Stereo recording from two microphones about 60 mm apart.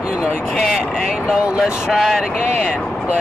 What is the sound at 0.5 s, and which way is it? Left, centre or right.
Speech, centre.